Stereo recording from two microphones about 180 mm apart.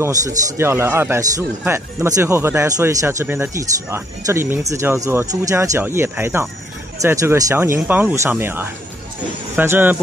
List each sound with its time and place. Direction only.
0.0 s a man's voice: 20° right (ahead or behind)